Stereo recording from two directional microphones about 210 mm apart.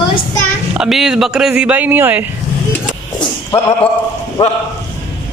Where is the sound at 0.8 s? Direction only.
Centre (ahead or behind).